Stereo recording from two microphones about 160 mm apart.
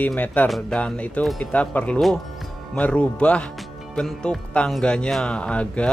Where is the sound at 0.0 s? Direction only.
10° left (ahead or behind).